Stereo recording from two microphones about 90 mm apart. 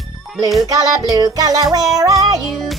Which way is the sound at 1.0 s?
45° right (ahead or behind).